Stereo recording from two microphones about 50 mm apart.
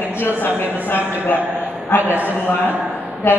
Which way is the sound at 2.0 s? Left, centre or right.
Right.